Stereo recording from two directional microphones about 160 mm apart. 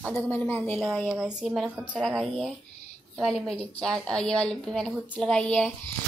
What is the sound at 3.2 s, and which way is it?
A woman's voice, 5° left (ahead or behind).